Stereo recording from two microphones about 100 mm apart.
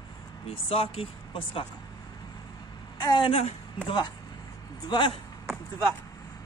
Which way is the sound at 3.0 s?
45° left (ahead or behind).